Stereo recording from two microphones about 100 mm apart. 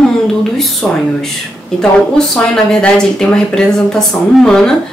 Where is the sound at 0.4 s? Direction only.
Centre (ahead or behind).